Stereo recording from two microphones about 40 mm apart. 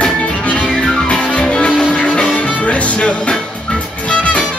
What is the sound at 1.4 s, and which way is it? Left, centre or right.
Music, left.